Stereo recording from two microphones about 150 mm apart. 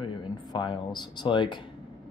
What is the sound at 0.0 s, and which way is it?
Speech, 30° left (ahead or behind).